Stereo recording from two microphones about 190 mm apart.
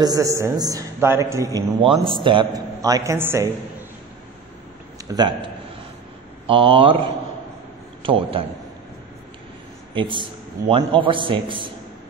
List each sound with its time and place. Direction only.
0.0 s a man's voice: 20° right (ahead or behind)
5.1 s a man's voice: 25° right (ahead or behind)
8.0 s a man's voice: 30° right (ahead or behind)
9.9 s a man's voice: 25° right (ahead or behind)